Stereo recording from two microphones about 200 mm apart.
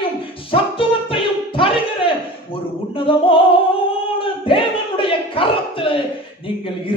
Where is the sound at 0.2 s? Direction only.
25° left (ahead or behind).